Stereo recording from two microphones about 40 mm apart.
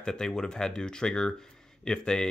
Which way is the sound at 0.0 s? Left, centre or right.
Centre.